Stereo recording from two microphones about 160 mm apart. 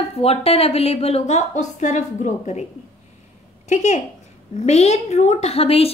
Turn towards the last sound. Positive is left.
turn(degrees=40)  # may be behind; listen again after turning